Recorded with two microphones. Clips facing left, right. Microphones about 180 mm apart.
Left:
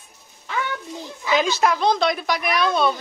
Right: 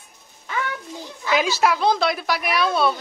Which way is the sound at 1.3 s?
5° right (ahead or behind).